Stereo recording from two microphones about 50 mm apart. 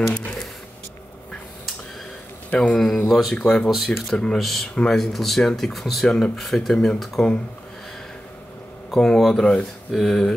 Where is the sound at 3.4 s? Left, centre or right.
Centre.